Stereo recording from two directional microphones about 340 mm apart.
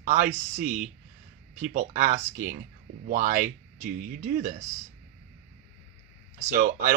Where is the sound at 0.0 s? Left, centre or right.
Centre.